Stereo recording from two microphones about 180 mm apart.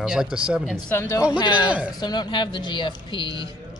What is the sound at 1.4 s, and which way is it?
Speech, 25° left (ahead or behind).